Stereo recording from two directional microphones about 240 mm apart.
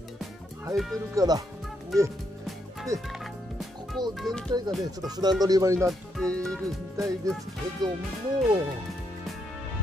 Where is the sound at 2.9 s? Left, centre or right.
Centre.